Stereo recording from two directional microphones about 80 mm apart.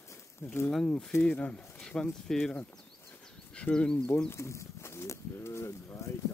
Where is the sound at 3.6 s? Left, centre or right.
Centre.